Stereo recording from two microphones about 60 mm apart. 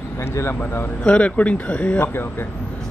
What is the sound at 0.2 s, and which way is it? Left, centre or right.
Speech, left.